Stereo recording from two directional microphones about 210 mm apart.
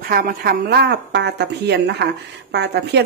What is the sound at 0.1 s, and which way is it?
Speech, 45° right (ahead or behind).